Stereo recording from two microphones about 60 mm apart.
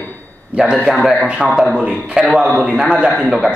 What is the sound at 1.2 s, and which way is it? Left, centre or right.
A man's voice, centre.